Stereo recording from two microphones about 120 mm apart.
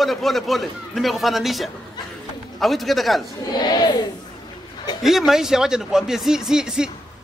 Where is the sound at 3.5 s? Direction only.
35° left (ahead or behind).